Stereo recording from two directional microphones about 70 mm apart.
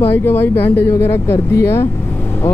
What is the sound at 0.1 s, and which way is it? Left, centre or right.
Speech, left.